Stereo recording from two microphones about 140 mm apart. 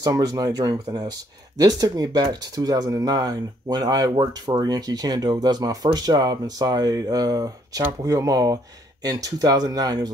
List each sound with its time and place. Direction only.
0.0 s speech: 25° right (ahead or behind)